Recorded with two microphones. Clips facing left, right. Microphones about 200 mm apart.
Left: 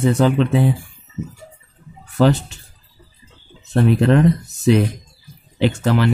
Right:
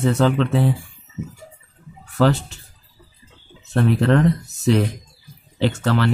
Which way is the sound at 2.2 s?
15° left (ahead or behind).